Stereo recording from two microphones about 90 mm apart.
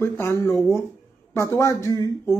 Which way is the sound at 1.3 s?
35° left (ahead or behind).